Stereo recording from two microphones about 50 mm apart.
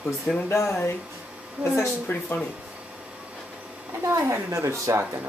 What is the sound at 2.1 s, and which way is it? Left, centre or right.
Speech, left.